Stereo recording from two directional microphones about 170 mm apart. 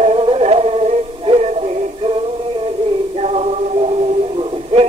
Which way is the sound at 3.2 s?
40° right (ahead or behind).